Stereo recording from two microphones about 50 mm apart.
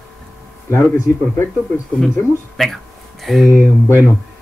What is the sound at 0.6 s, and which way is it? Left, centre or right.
Speech, left.